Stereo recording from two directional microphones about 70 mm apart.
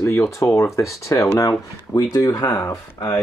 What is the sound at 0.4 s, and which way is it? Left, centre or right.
Speech, left.